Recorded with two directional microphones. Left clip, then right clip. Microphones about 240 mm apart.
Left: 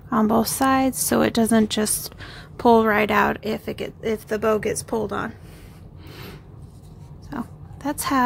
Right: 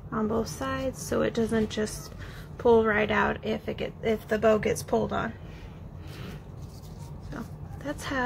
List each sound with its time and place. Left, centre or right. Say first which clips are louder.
0.1 s a woman's voice: left 9 dB; left
7.2 s oink: left 8 dB; left